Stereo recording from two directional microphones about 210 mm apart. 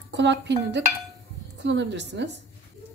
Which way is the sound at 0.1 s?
60° right (ahead or behind).